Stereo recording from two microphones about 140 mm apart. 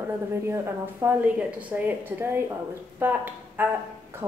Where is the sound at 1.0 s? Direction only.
10° right (ahead or behind).